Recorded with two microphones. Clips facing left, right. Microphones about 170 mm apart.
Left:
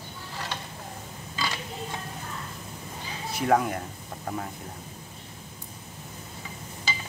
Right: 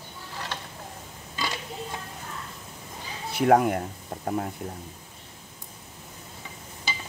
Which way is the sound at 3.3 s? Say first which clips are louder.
Right 4 dB; 60° right (ahead or behind).